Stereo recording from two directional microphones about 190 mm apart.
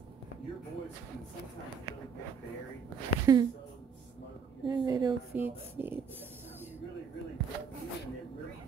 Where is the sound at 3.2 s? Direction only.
20° right (ahead or behind).